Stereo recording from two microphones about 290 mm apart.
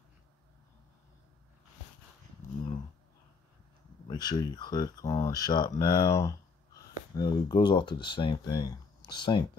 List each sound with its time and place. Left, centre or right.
4.1 s speech: centre